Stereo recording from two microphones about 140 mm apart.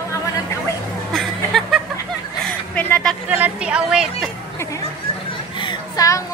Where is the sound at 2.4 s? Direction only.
10° left (ahead or behind).